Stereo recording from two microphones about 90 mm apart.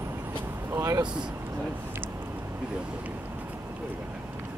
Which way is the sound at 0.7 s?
35° right (ahead or behind).